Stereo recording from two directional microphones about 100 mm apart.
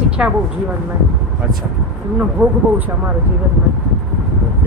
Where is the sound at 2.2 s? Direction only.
15° right (ahead or behind).